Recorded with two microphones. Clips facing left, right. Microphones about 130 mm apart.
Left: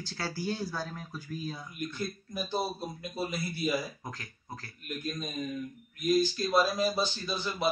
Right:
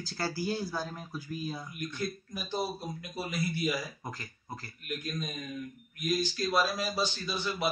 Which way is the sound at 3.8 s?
Centre (ahead or behind).